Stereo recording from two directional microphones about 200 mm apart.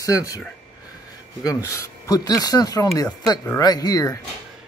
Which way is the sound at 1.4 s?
15° left (ahead or behind).